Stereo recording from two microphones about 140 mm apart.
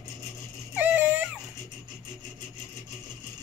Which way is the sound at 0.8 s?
10° right (ahead or behind).